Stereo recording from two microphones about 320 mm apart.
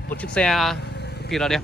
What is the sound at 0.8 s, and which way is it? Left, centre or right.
Vehicle, left.